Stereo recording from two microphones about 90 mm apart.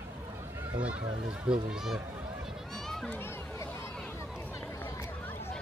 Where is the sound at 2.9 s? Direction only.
5° left (ahead or behind).